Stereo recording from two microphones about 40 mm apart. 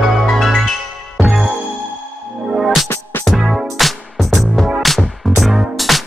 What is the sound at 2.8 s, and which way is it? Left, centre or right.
Music, left.